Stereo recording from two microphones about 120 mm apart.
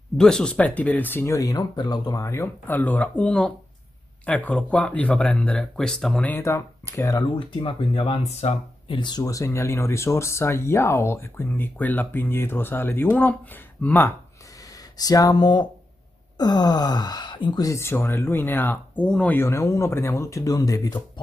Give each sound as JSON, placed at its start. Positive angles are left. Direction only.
{"t": 0.2, "sound": "speech", "side_deg": 5}
{"t": 6.2, "sound": "speech", "side_deg": 20}
{"t": 7.3, "sound": "speech", "side_deg": 50}
{"t": 9.2, "sound": "speech", "side_deg": 25}
{"t": 15.0, "sound": "speech", "side_deg": 30}